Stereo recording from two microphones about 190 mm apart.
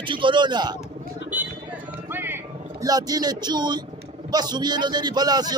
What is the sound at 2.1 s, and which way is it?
Music, 10° right (ahead or behind).